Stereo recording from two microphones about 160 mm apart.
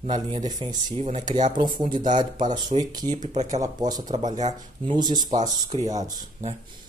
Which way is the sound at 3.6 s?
25° right (ahead or behind).